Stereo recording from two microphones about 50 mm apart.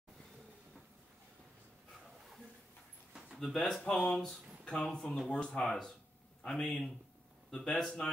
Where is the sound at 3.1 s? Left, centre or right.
Centre.